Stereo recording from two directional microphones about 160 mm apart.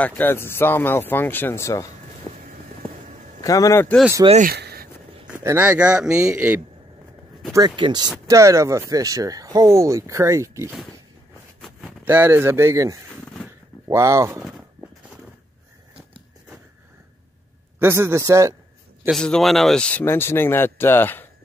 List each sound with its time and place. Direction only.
0.0 s speech: 10° left (ahead or behind)
3.3 s a man's voice: 20° left (ahead or behind)
4.5 s a sound: 75° right (ahead or behind)
5.3 s speech: 15° right (ahead or behind)
7.5 s speech: 30° right (ahead or behind)
12.0 s speech: 10° right (ahead or behind)
17.7 s speech: 15° right (ahead or behind)
19.0 s speech: 5° left (ahead or behind)